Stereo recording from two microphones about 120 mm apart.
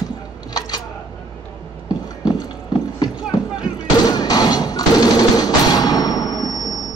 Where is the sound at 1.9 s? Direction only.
35° left (ahead or behind).